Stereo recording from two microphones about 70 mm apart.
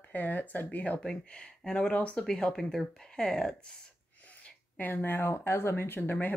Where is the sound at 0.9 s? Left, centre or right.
Centre.